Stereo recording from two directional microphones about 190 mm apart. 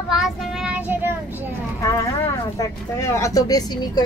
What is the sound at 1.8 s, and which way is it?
Speech, 15° left (ahead or behind).